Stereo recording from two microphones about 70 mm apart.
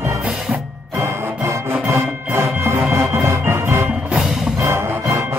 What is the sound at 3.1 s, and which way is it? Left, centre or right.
Organ, right.